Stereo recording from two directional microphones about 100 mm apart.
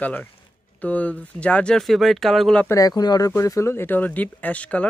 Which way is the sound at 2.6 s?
35° left (ahead or behind).